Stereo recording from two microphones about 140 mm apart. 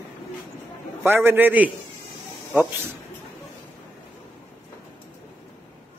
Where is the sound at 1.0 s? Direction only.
15° right (ahead or behind).